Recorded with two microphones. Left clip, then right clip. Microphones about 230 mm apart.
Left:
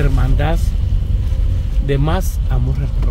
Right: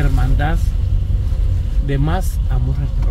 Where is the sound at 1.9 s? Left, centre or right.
Centre.